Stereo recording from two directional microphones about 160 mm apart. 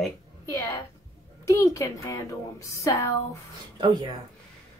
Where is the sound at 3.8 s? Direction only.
30° right (ahead or behind).